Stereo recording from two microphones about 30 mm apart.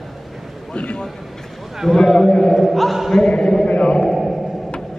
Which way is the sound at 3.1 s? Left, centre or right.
Left.